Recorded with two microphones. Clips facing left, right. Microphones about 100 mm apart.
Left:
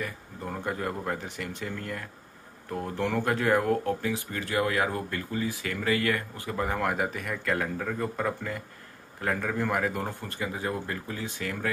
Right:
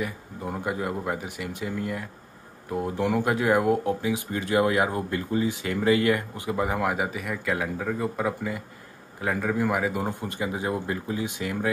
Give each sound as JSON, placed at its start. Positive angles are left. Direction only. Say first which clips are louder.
{"t": 0.0, "sound": "speech", "louder": "right 4 dB", "side_deg": -10}